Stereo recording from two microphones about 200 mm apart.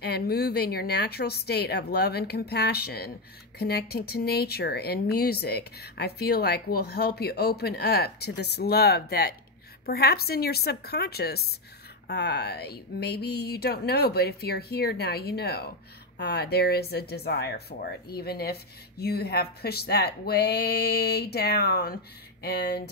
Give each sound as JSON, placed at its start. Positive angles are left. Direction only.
{"t": 0.0, "sound": "speech", "side_deg": 50}